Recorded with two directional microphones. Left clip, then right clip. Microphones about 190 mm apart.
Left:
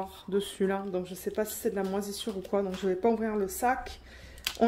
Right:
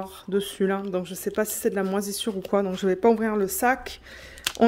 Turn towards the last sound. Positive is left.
turn(degrees=-50)  # may be behind; listen again after turning